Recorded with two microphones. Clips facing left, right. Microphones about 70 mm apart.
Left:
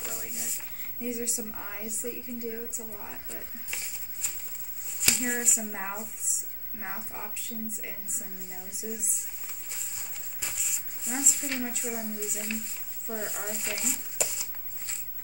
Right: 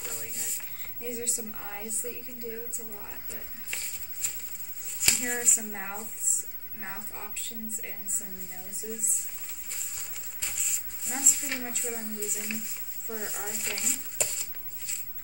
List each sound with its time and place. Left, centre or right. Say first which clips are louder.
0.0 s rub: left 2 dB; centre
1.0 s a woman's voice: left 2 dB; centre
3.3 s a sound: left 1 dB; centre
5.0 s a woman's voice: left 2 dB; centre
8.7 s speech: left 1 dB; centre
9.9 s a sound: left 1 dB; centre
11.6 s a woman's voice: left 2 dB; centre